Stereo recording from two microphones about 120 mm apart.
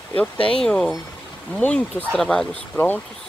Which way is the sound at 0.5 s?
5° left (ahead or behind).